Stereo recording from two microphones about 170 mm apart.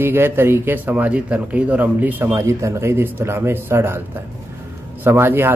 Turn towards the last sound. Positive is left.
turn(degrees=-15)  # may be behind; listen again after turning